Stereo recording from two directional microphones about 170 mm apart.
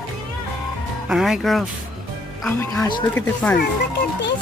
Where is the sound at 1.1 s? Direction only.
Centre (ahead or behind).